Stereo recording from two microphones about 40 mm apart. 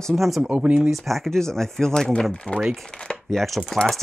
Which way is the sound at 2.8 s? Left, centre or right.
Left.